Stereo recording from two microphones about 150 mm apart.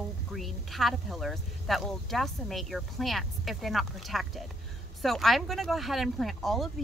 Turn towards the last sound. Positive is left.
turn(degrees=0)  # may be behind; listen again after turning